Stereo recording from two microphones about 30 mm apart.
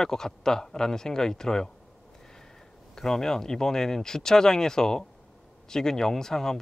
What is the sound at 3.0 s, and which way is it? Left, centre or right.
Speech, centre.